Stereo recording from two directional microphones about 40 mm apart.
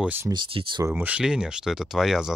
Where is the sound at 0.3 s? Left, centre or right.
Right.